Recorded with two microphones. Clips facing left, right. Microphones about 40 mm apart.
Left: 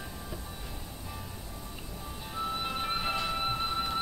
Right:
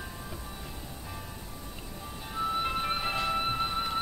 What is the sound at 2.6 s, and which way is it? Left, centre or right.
Music, centre.